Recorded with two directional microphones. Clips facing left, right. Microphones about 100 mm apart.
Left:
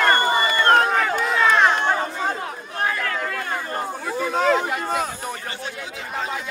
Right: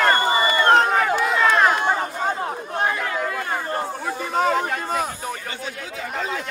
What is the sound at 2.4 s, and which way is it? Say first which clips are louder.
Chatter: right 4 dB; 35° right (ahead or behind).